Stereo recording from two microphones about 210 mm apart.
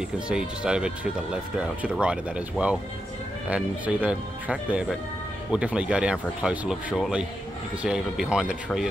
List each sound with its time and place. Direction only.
0.3 s speech: 5° right (ahead or behind)